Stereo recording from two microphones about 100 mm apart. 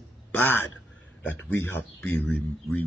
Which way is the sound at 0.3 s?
20° left (ahead or behind).